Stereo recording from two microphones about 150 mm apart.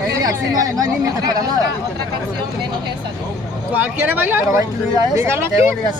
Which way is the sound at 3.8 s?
15° right (ahead or behind).